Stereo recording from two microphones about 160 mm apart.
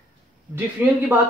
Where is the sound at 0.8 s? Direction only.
10° right (ahead or behind).